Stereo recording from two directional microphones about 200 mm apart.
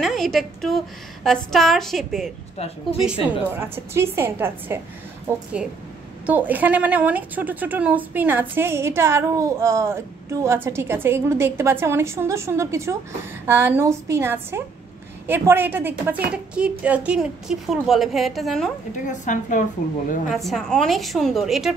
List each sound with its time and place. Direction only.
0.0 s a woman's voice: centre (ahead or behind)
3.3 s a woman's voice: 10° right (ahead or behind)
6.2 s a woman's voice: 10° right (ahead or behind)
19.0 s a woman's voice: 40° left (ahead or behind)
20.2 s a woman's voice: centre (ahead or behind)